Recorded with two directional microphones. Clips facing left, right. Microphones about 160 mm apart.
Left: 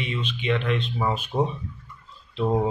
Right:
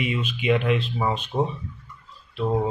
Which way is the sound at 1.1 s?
10° left (ahead or behind).